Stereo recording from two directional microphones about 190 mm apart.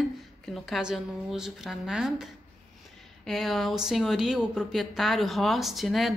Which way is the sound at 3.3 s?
Centre (ahead or behind).